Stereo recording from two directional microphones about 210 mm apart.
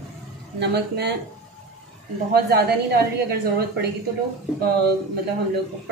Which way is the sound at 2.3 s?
50° right (ahead or behind).